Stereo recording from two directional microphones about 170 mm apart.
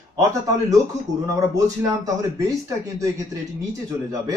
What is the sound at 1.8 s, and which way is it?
Speech, 20° right (ahead or behind).